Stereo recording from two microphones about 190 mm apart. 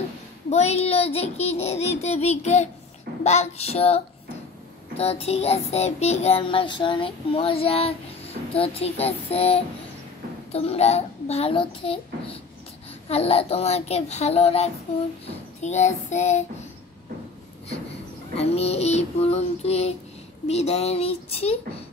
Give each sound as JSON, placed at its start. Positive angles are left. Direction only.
{"t": 0.5, "sound": "child singing", "side_deg": 35}
{"t": 18.4, "sound": "child singing", "side_deg": 35}